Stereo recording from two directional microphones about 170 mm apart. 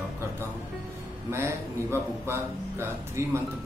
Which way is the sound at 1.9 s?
15° right (ahead or behind).